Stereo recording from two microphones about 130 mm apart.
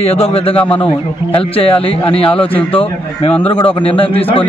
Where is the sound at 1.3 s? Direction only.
45° left (ahead or behind).